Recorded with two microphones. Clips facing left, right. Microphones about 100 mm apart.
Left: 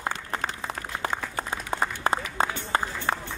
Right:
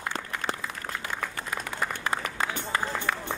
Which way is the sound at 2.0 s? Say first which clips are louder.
Left 4 dB; 30° left (ahead or behind).